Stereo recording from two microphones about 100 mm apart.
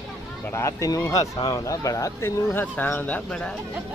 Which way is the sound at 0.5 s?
30° left (ahead or behind).